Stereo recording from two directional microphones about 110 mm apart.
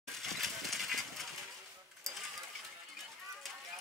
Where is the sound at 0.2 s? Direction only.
Centre (ahead or behind).